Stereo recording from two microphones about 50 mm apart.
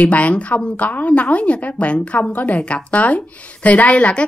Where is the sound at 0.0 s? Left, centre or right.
Left.